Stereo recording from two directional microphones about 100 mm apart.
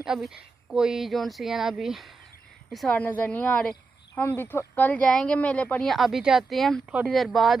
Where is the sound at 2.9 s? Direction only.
15° left (ahead or behind).